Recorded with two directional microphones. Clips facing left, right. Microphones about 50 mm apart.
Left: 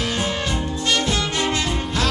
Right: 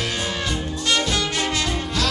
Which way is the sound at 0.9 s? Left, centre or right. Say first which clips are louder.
Even; left.